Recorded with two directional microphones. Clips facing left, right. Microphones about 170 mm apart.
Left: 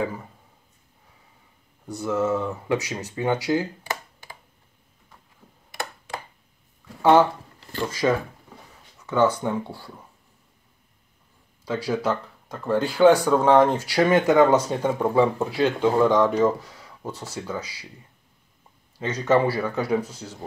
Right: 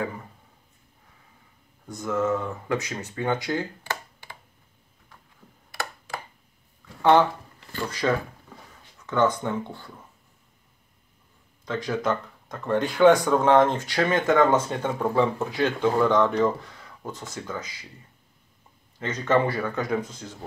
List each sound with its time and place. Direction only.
1.9 s speech: 10° left (ahead or behind)
5.7 s a sound: 20° left (ahead or behind)
7.0 s speech: 10° left (ahead or behind)
11.6 s speech: 10° left (ahead or behind)
18.9 s speech: 10° left (ahead or behind)